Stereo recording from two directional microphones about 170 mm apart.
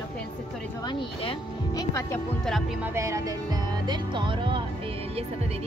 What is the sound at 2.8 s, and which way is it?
Speech, 15° right (ahead or behind).